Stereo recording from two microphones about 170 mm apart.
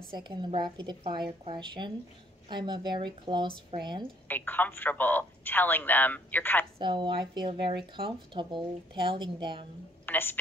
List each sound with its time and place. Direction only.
0.2 s speech: 25° right (ahead or behind)
4.3 s speech: 10° left (ahead or behind)
6.8 s speech: 30° right (ahead or behind)
10.0 s a woman's voice: 10° left (ahead or behind)